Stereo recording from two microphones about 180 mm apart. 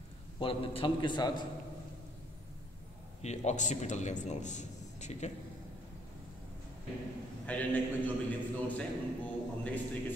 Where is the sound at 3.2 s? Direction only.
40° left (ahead or behind).